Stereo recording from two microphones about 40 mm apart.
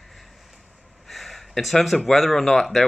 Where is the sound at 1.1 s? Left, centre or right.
Centre.